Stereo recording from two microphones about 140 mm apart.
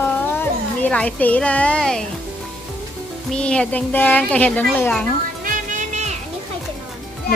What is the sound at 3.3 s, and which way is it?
A woman's voice, 5° left (ahead or behind).